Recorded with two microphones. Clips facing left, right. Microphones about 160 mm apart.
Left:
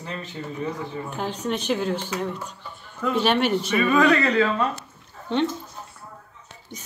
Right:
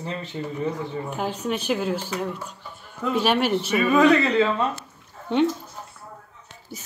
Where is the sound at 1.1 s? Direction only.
10° right (ahead or behind).